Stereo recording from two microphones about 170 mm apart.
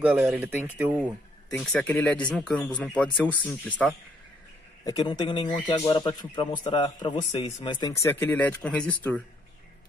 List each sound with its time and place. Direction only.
0.0 s speech: 5° right (ahead or behind)
1.5 s speech: centre (ahead or behind)
4.8 s speech: 25° left (ahead or behind)
6.4 s speech: 45° left (ahead or behind)
6.7 s speech: 30° left (ahead or behind)
7.9 s speech: 15° left (ahead or behind)